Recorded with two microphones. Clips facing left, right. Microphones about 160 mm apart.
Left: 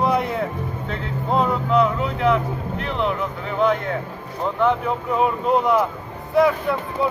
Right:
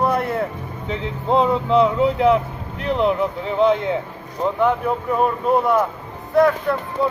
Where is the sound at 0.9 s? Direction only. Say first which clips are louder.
Right 4 dB; 25° right (ahead or behind).